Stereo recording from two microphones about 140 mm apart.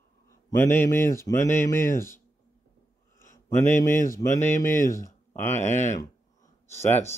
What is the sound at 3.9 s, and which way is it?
Speech, 70° left (ahead or behind).